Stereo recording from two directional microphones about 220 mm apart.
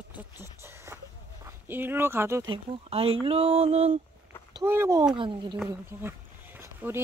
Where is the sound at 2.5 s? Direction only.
25° right (ahead or behind).